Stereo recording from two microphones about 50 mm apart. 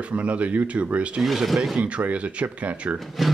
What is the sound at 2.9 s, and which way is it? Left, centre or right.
Speech, centre.